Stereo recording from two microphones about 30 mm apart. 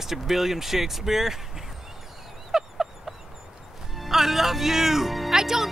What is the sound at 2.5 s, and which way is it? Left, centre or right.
Dog, centre.